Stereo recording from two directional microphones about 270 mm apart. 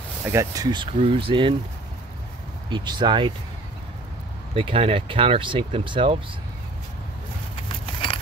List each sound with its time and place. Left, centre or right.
0.3 s speech: centre
2.7 s speech: centre
4.6 s speech: right
7.6 s keys jangling: centre